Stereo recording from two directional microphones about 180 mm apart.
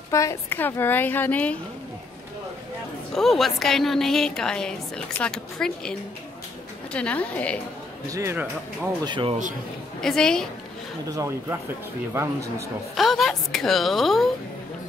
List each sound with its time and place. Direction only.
0.1 s a woman's voice: 15° left (ahead or behind)
3.2 s a woman's voice: centre (ahead or behind)
8.1 s speech: 15° right (ahead or behind)
9.0 s speech: 30° right (ahead or behind)
9.9 s a woman's voice: 5° left (ahead or behind)
11.1 s speech: 15° right (ahead or behind)
12.9 s a woman's voice: centre (ahead or behind)